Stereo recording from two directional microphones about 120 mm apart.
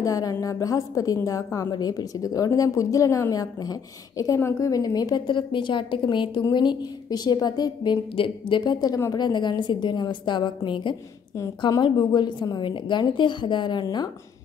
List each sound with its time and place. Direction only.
0.0 s a woman's voice: 30° left (ahead or behind)